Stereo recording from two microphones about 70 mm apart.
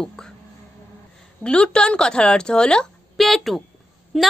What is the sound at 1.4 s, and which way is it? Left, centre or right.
A woman's voice, centre.